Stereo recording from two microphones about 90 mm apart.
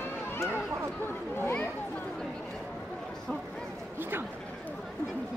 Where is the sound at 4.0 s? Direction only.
25° right (ahead or behind).